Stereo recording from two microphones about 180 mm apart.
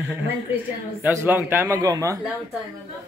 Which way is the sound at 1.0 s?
10° right (ahead or behind).